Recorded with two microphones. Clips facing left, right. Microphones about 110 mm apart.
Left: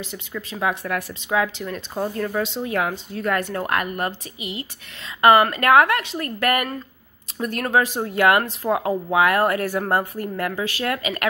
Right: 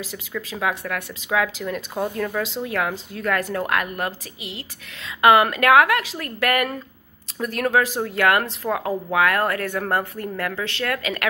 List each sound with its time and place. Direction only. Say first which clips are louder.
0.4 s a woman's voice: left 1 dB; centre (ahead or behind)